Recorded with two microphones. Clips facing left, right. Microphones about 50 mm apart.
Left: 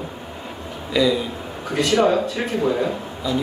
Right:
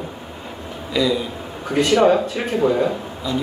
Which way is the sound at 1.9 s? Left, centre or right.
Centre.